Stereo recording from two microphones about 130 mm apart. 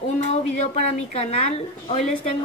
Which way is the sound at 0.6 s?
60° left (ahead or behind).